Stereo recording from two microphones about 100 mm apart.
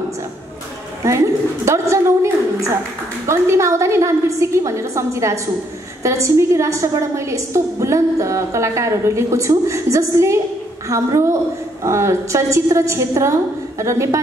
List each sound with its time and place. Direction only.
1.0 s a woman's voice: 30° right (ahead or behind)